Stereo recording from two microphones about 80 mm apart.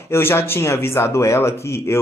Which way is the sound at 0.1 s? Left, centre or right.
Left.